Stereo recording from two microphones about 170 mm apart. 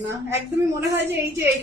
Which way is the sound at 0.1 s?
15° right (ahead or behind).